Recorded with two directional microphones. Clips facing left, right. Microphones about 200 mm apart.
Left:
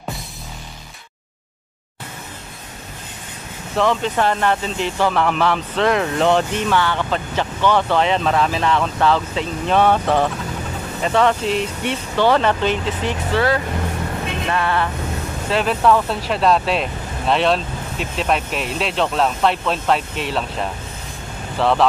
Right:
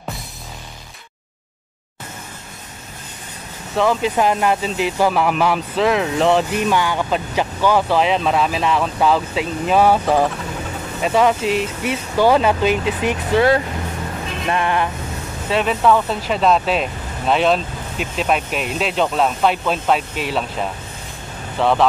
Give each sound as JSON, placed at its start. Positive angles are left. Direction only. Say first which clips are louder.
{"t": 3.7, "sound": "speech", "louder": "right 1 dB", "side_deg": -5}
{"t": 6.7, "sound": "speech", "louder": "left 1 dB", "side_deg": -10}
{"t": 15.5, "sound": "speech", "louder": "even", "side_deg": 0}